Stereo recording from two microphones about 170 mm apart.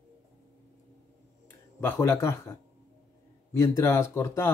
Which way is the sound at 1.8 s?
15° left (ahead or behind).